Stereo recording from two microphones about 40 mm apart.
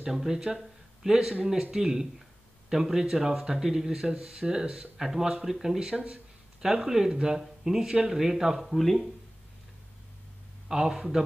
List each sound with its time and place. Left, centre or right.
0.0 s speech: centre
5.9 s speech: right
6.6 s speech: centre
8.7 s speech: centre
10.7 s speech: centre